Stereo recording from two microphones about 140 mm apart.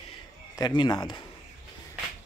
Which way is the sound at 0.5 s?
30° left (ahead or behind).